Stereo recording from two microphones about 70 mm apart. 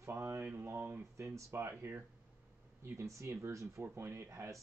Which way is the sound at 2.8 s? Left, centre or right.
Right.